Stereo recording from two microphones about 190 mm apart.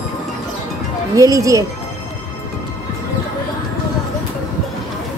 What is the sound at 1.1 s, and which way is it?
Speech, 15° right (ahead or behind).